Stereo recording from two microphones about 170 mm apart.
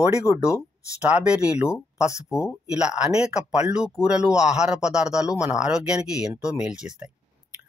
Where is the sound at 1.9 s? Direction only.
40° left (ahead or behind).